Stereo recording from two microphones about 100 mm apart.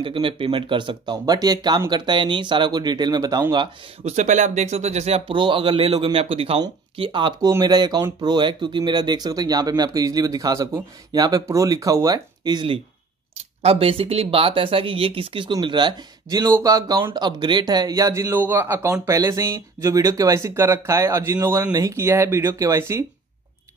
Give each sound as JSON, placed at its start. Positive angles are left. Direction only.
{"t": 0.0, "sound": "speech", "side_deg": -60}
{"t": 4.0, "sound": "speech", "side_deg": -90}
{"t": 5.4, "sound": "a man's voice", "side_deg": -55}
{"t": 7.0, "sound": "speech", "side_deg": -55}
{"t": 13.6, "sound": "speech", "side_deg": -75}
{"t": 15.6, "sound": "speech", "side_deg": -50}
{"t": 16.3, "sound": "speech", "side_deg": -40}